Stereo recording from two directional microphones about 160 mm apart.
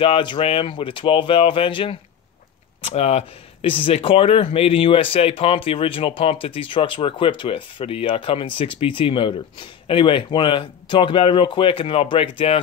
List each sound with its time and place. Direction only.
0.0 s speech: 30° left (ahead or behind)